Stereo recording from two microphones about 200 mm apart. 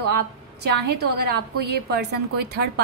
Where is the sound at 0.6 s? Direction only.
50° right (ahead or behind).